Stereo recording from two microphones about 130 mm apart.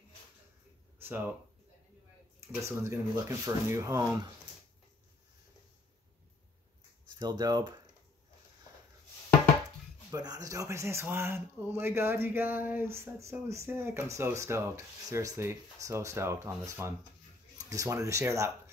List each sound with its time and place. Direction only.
0.9 s a sound: 15° right (ahead or behind)
2.6 s speech: 20° right (ahead or behind)
7.2 s speech: 30° right (ahead or behind)
10.1 s speech: 30° right (ahead or behind)